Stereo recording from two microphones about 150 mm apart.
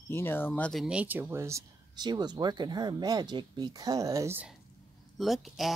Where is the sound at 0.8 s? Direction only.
10° right (ahead or behind).